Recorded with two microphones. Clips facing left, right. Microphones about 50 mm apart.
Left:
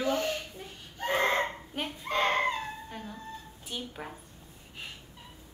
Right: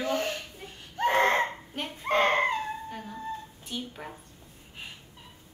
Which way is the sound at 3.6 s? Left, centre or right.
Centre.